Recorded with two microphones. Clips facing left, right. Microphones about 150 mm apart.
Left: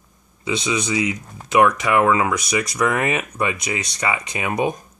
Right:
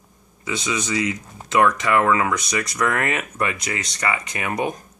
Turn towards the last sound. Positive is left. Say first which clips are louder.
# left 3 dB
turn(degrees=20)  # may be behind; listen again after turning